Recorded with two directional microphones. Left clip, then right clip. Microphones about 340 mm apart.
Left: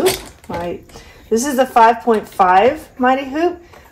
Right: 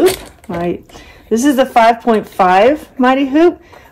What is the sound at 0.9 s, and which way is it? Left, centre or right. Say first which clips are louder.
Speech: right 1 dB; right.